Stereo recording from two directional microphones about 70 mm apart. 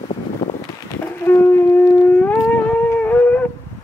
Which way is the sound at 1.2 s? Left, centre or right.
Left.